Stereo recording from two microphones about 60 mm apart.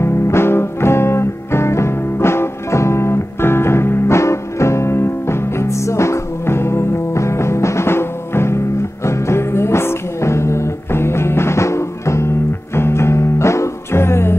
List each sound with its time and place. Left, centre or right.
0.0 s music: left